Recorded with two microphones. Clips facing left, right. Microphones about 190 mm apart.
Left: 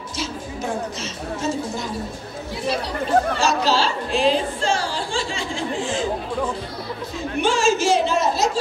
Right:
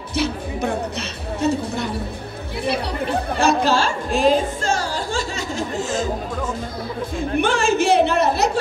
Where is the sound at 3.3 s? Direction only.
55° right (ahead or behind).